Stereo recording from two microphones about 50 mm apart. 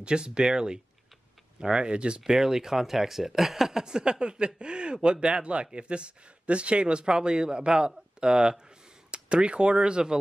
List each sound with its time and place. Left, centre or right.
0.0 s speech: centre
2.3 s speech: centre